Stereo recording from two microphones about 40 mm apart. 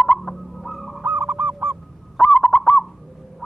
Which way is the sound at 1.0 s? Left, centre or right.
Right.